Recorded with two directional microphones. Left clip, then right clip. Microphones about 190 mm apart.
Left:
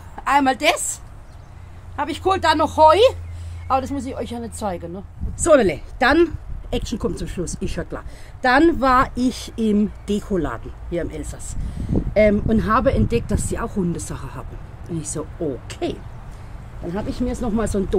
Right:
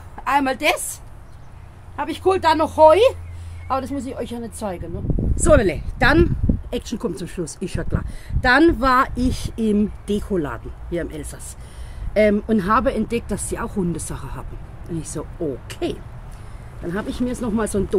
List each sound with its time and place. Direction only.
0.1 s a woman's voice: 25° left (ahead or behind)
2.0 s speech: 25° left (ahead or behind)
5.3 s a woman's voice: centre (ahead or behind)
16.9 s speech: 15° right (ahead or behind)